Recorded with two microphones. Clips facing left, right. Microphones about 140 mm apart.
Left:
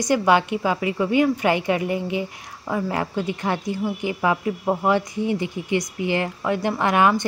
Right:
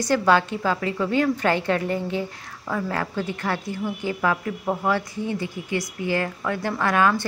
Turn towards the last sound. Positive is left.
turn(degrees=20)  # may be behind; listen again after turning